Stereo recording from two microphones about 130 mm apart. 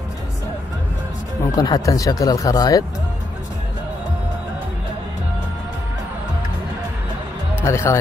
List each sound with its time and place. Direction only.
1.5 s speech: 30° left (ahead or behind)
7.6 s speech: 20° left (ahead or behind)